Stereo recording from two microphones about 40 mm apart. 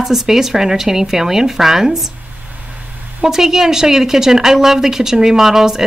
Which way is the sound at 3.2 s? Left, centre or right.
Centre.